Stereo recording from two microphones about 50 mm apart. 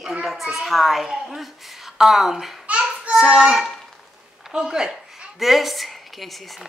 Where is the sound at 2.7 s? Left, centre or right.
Right.